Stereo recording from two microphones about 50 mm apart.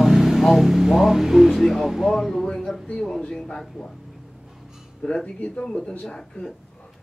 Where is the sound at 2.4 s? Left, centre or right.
Centre.